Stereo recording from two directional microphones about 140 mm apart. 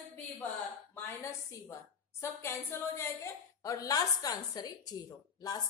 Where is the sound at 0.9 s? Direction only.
15° left (ahead or behind).